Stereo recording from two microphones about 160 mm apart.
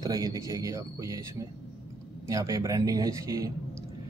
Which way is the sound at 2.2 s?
20° right (ahead or behind).